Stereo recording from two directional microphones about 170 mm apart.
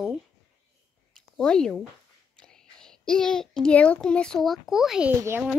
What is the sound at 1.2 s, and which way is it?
A child's voice, 5° left (ahead or behind).